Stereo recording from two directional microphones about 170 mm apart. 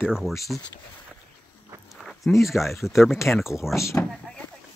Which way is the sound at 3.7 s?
15° left (ahead or behind).